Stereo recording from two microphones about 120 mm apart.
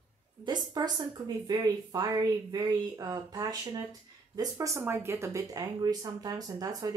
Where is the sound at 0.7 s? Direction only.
35° right (ahead or behind).